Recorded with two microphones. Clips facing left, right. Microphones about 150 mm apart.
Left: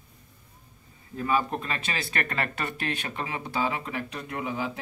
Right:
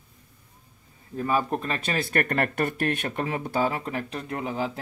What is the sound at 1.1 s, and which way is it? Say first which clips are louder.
Speech: right 1 dB; 40° right (ahead or behind).